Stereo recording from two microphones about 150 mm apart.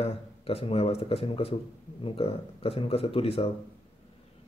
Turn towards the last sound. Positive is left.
turn(degrees=40)  # may be behind; listen again after turning